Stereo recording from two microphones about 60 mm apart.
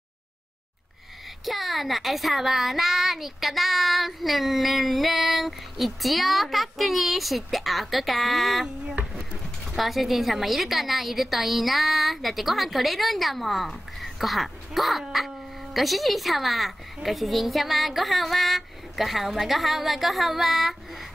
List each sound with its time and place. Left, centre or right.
1.4 s a woman's voice: centre
8.8 s a sound: right
9.7 s a woman's voice: centre